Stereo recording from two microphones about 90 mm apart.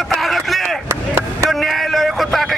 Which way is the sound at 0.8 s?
30° right (ahead or behind).